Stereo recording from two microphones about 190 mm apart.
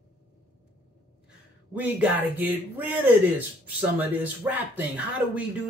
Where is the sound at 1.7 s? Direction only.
10° right (ahead or behind).